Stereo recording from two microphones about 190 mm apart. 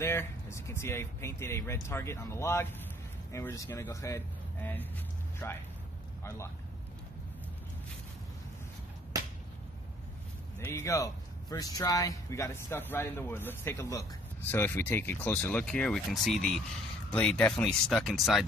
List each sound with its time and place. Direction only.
0.0 s speech: 15° left (ahead or behind)
9.1 s a sound: 20° right (ahead or behind)
10.6 s speech: 15° left (ahead or behind)